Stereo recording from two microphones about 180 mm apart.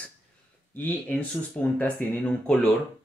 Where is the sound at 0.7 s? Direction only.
10° left (ahead or behind).